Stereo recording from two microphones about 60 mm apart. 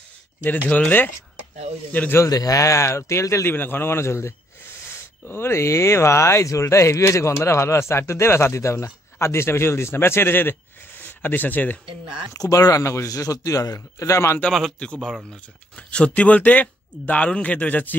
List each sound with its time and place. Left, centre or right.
0.7 s speech: left
2.2 s speech: left
3.5 s speech: left
12.4 s a man's voice: left
14.8 s speech: centre